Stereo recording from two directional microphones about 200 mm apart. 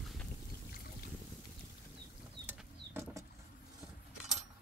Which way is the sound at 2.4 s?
10° right (ahead or behind).